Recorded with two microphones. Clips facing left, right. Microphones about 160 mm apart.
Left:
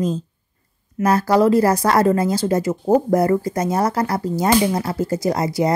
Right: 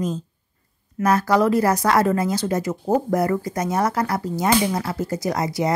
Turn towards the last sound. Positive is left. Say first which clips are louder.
# left 3 dB
turn(degrees=30)  # may be behind; listen again after turning